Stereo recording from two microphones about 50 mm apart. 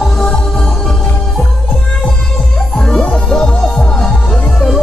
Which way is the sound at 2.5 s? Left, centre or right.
Centre.